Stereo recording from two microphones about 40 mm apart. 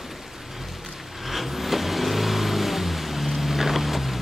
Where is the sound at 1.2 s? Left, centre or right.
Centre.